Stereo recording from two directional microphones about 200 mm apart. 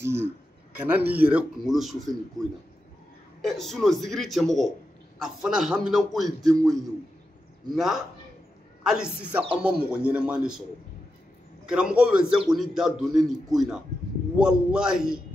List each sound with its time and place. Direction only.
0.0 s a man's voice: 10° right (ahead or behind)
3.4 s a man's voice: centre (ahead or behind)
7.7 s a man's voice: centre (ahead or behind)
11.6 s a man's voice: 5° right (ahead or behind)